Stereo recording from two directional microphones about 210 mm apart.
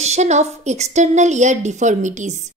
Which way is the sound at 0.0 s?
30° right (ahead or behind).